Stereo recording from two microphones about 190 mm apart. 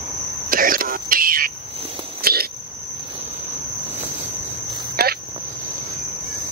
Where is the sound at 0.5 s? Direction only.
50° right (ahead or behind).